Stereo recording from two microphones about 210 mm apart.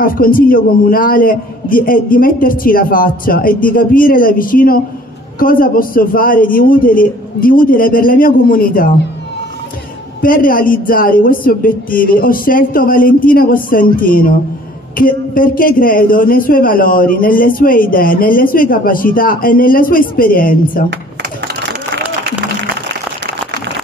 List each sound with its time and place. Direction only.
0.0 s a man's voice: 40° left (ahead or behind)
10.2 s a man's voice: 40° left (ahead or behind)
20.9 s typing: 55° right (ahead or behind)